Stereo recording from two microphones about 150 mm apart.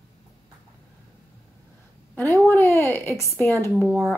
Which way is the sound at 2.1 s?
15° left (ahead or behind).